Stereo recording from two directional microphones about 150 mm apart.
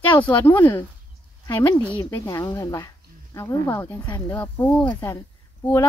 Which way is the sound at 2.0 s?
25° left (ahead or behind).